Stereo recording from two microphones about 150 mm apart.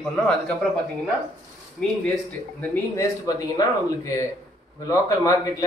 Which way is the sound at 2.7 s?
20° left (ahead or behind).